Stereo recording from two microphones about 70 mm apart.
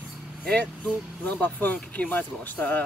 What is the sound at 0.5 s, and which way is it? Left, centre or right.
Speech, left.